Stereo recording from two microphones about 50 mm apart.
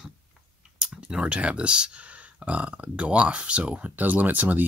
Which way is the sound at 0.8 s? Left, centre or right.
Centre.